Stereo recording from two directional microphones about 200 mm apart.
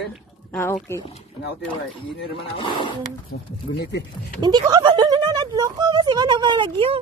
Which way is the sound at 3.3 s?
55° left (ahead or behind).